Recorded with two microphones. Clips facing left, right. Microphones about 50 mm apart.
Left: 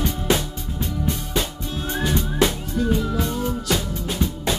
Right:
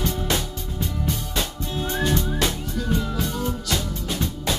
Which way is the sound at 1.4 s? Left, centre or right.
Centre.